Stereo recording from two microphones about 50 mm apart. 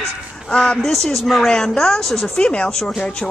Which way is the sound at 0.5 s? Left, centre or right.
Centre.